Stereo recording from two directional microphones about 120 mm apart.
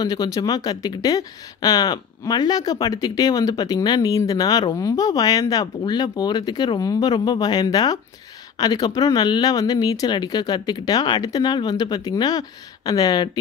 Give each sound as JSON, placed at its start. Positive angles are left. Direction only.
{"t": 0.0, "sound": "speech", "side_deg": 30}